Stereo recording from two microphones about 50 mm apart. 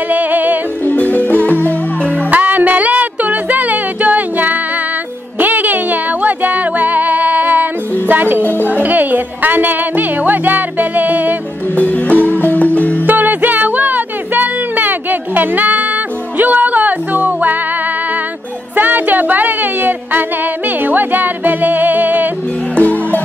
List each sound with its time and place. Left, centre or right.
0.1 s music: right
0.8 s music: left
2.3 s music: right
8.4 s music: left
8.6 s music: right
11.7 s music: left
13.0 s music: right
18.8 s music: right
22.8 s music: left